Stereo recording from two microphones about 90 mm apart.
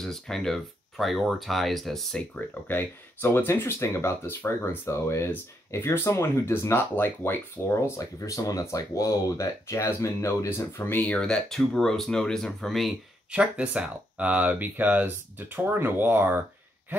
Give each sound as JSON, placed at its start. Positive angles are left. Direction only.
{"t": 0.0, "sound": "speech", "side_deg": 5}
{"t": 2.3, "sound": "speech", "side_deg": 25}
{"t": 11.1, "sound": "speech", "side_deg": 10}
{"t": 13.3, "sound": "speech", "side_deg": -10}